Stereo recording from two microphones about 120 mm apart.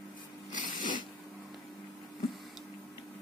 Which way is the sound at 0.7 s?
90° left.